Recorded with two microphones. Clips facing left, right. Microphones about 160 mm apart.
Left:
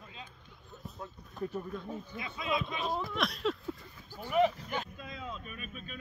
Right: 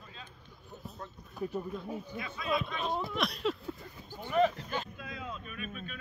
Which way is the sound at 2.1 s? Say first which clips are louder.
Right 1 dB; 20° left (ahead or behind).